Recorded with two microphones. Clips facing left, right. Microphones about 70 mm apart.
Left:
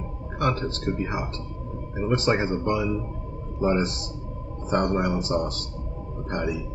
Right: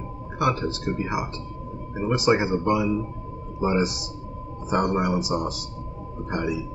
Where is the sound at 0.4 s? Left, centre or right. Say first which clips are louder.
Right 2 dB; centre.